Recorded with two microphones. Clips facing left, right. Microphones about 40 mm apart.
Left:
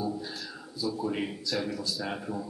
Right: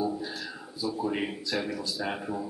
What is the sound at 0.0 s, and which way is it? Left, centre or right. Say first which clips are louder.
A man's voice: right 3 dB; centre.